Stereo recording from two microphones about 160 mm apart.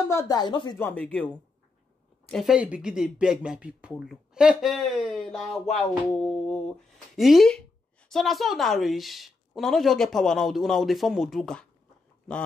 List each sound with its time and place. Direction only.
0.1 s speech: 20° left (ahead or behind)
0.7 s a woman's voice: 10° left (ahead or behind)